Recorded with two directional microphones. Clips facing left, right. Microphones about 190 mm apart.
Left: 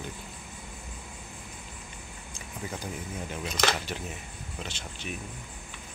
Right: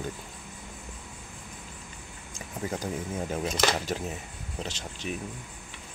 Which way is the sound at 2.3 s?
40° right (ahead or behind).